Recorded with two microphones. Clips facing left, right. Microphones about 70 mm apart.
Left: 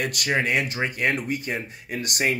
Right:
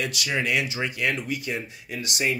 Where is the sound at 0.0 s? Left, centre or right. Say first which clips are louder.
Left 3 dB; left.